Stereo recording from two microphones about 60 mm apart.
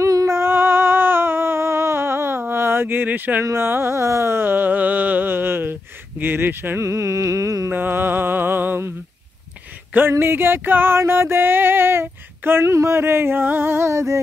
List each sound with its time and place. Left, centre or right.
0.0 s humming: right
0.4 s humming: right
3.5 s music: right
6.8 s music: right
7.7 s music: right
9.9 s music: right